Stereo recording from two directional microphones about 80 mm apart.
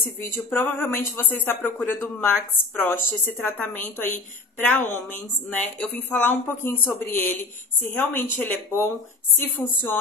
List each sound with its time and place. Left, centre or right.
0.2 s speech: left